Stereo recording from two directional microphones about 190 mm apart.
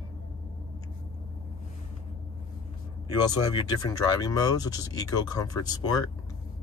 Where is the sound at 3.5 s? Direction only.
20° left (ahead or behind).